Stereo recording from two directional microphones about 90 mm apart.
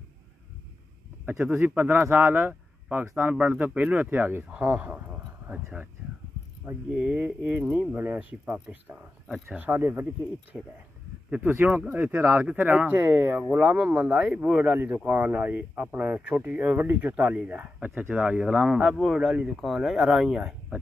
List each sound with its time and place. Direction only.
1.4 s speech: 15° right (ahead or behind)
6.9 s speech: 15° right (ahead or behind)
9.6 s speech: 20° right (ahead or behind)
10.5 s speech: 5° right (ahead or behind)
11.4 s speech: 20° right (ahead or behind)